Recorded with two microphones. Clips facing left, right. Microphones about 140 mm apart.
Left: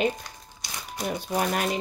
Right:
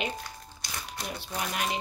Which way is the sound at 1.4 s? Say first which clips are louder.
Left 6 dB; 45° left (ahead or behind).